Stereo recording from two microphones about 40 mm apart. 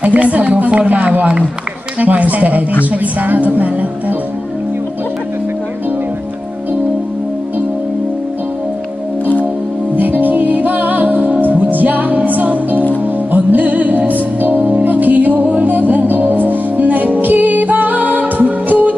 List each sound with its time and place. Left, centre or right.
0.0 s run: right
2.0 s a woman's voice: right
9.2 s music: left
9.9 s music: right